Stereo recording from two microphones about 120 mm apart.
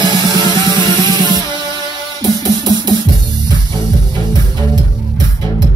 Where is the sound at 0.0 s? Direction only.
35° right (ahead or behind).